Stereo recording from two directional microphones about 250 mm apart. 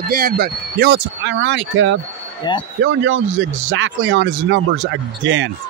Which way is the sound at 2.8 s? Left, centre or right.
Right.